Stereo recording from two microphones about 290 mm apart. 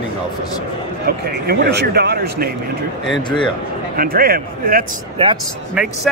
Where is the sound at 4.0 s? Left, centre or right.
Right.